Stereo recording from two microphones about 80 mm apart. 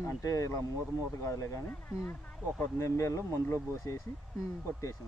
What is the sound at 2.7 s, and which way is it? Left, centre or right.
Speech, left.